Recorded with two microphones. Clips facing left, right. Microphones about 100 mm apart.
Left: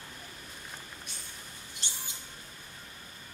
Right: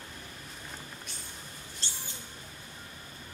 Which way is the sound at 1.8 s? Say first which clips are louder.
Even; 15° left (ahead or behind).